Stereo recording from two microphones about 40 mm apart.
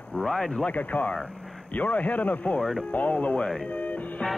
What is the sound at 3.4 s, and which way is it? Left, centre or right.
Speech, centre.